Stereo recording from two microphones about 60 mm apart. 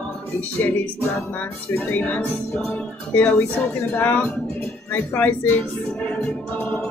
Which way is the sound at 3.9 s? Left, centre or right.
Left.